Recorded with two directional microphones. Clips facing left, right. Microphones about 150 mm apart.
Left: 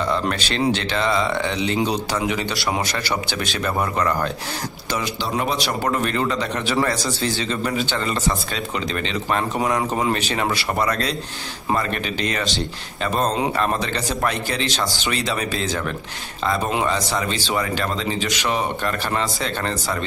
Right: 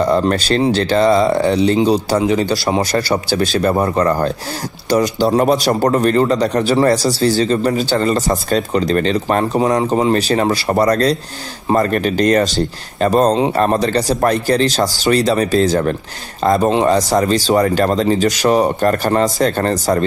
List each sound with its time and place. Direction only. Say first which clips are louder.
0.0 s speech: right 8 dB; 40° right (ahead or behind)